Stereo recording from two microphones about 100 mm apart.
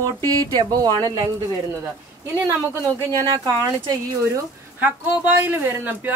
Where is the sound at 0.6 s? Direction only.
45° right (ahead or behind).